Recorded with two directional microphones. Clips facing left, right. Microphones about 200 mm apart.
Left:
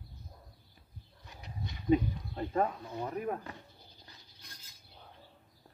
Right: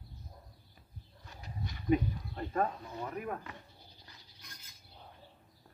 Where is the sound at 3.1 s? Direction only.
30° left (ahead or behind).